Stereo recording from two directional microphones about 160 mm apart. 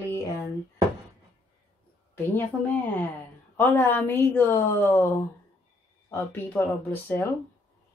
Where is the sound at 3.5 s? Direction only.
15° left (ahead or behind).